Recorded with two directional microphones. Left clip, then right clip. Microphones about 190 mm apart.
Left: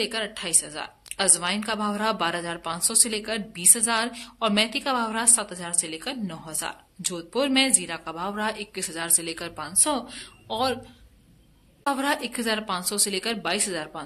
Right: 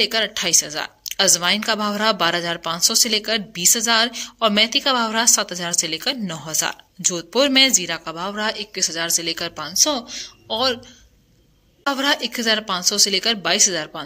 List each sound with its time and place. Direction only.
0.0 s a woman's voice: 25° right (ahead or behind)
11.8 s a woman's voice: 20° right (ahead or behind)